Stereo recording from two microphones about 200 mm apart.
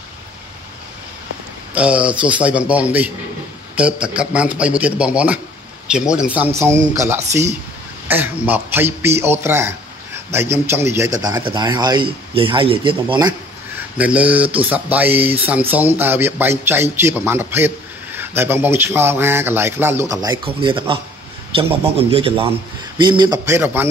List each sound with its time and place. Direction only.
1.8 s speech: 5° right (ahead or behind); by 13.3 s 25° right (ahead or behind)
13.9 s speech: 5° right (ahead or behind)